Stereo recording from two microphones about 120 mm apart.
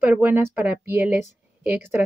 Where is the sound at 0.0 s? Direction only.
15° right (ahead or behind).